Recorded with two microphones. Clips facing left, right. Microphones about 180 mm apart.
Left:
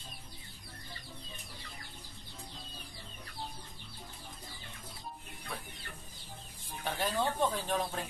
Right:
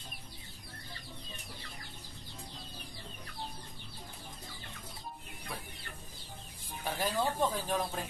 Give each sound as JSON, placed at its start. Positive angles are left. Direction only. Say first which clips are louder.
{"t": 6.8, "sound": "speech", "louder": "even", "side_deg": 0}